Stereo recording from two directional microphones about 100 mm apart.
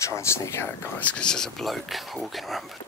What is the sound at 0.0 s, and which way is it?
Speech, 30° left (ahead or behind).